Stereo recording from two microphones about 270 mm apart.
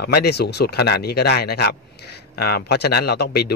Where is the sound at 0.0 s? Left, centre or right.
Left.